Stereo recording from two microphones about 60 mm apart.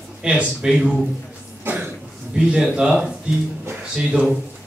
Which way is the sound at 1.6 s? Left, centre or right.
Right.